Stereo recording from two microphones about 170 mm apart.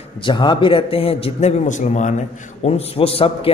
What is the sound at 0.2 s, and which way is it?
A man's voice, 25° left (ahead or behind).